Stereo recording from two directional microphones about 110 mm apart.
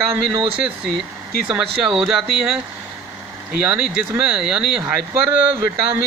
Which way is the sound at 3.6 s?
10° right (ahead or behind).